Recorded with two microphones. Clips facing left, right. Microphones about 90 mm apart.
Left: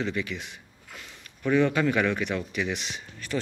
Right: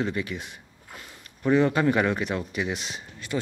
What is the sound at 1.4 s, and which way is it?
Speech, 30° right (ahead or behind).